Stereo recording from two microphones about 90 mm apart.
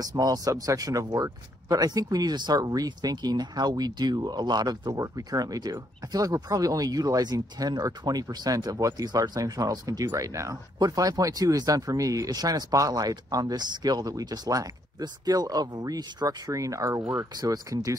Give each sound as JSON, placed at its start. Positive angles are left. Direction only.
{"t": 0.0, "sound": "speech", "side_deg": -45}